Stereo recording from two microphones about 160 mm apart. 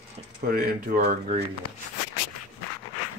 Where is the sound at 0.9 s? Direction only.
55° right (ahead or behind).